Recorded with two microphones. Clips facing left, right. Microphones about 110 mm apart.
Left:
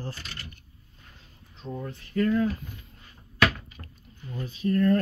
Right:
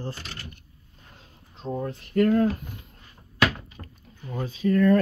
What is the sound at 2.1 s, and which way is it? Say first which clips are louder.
Speech: right 4 dB; 55° right (ahead or behind).